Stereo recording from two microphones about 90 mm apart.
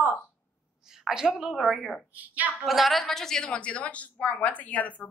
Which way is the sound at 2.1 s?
20° right (ahead or behind).